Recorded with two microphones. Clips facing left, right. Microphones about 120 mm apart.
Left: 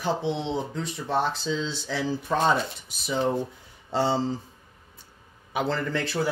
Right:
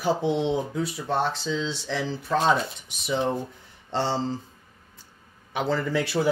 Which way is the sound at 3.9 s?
5° left (ahead or behind).